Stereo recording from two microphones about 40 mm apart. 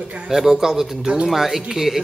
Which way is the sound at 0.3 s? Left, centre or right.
Centre.